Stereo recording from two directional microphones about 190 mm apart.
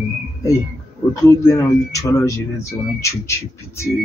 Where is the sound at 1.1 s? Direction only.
15° left (ahead or behind).